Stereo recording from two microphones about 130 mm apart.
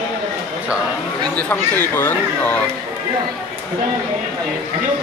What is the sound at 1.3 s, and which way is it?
Speech, 10° left (ahead or behind).